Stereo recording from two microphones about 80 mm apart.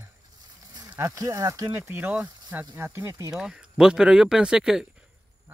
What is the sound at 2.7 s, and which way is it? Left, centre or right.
Speech, right.